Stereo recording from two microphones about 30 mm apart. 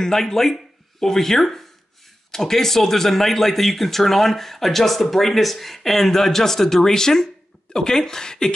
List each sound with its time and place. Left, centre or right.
0.0 s speech: centre